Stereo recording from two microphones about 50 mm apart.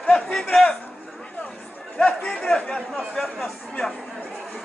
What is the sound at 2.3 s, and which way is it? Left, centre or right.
Speech, centre.